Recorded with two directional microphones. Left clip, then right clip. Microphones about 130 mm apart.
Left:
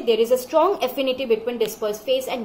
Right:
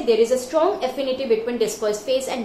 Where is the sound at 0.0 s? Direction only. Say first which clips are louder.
Right 1 dB; 40° left (ahead or behind).